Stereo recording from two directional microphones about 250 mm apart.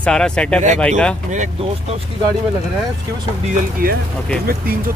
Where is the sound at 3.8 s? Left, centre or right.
Right.